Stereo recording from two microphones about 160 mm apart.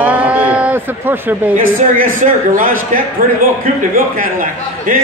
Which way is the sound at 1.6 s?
60° right (ahead or behind).